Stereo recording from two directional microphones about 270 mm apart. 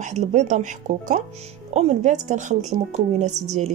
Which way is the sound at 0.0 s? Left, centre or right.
Right.